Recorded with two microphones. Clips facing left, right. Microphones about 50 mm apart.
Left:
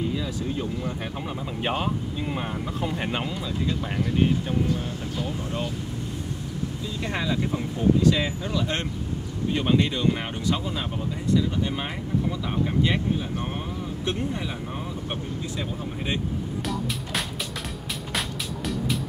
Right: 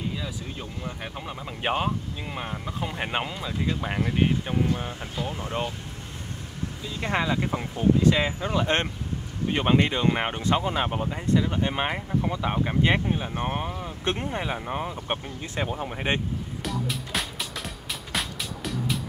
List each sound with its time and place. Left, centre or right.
0.2 s speech: centre; by 5.7 s right
7.0 s speech: right
16.6 s music: centre